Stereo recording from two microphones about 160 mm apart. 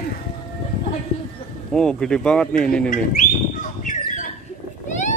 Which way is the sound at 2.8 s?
60° left (ahead or behind).